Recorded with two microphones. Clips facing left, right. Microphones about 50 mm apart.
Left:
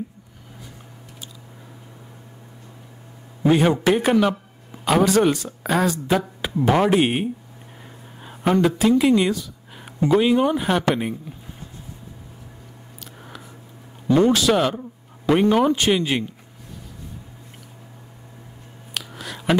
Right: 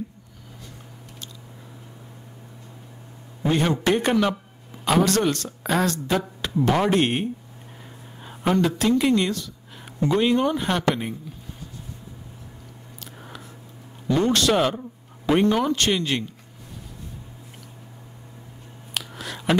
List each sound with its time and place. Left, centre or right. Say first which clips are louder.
3.4 s speech: left 4 dB; centre
13.0 s a sound: even; centre
14.0 s speech: left 5 dB; centre
14.3 s speech: left 2 dB; centre
15.5 s speech: left 4 dB; centre
18.9 s a sound: even; centre